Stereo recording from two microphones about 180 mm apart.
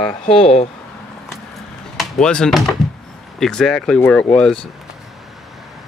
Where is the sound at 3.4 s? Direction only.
5° left (ahead or behind).